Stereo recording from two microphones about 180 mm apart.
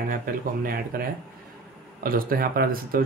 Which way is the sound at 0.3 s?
55° right (ahead or behind).